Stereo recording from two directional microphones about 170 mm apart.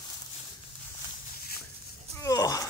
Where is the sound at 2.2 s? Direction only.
20° left (ahead or behind).